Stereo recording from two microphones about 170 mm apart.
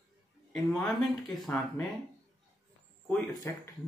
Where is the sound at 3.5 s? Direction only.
15° left (ahead or behind).